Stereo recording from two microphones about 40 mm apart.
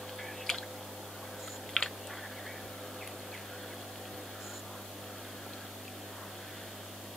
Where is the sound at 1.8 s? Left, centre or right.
Centre.